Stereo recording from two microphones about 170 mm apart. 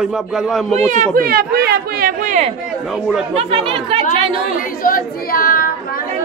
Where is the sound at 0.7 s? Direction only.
45° right (ahead or behind).